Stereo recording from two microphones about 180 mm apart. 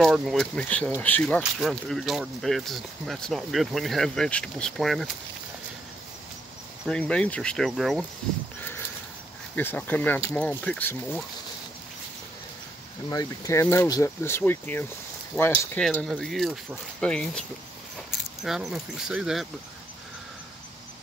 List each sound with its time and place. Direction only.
0.0 s speech: centre (ahead or behind)
6.9 s speech: 5° left (ahead or behind)
8.5 s a sound: 10° left (ahead or behind)
9.6 s speech: 10° left (ahead or behind)
13.1 s speech: 20° left (ahead or behind); by 17.4 s 5° left (ahead or behind)
18.4 s speech: centre (ahead or behind)